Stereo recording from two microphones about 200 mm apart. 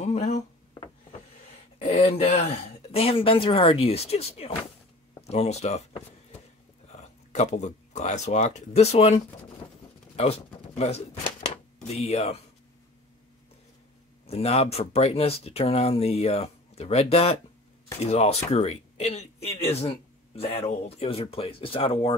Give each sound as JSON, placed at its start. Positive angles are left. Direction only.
{"t": 0.0, "sound": "speech", "side_deg": 35}
{"t": 1.8, "sound": "speech", "side_deg": 35}
{"t": 14.2, "sound": "speech", "side_deg": 30}